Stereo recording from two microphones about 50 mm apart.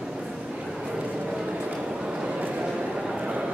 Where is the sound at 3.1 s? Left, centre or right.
Centre.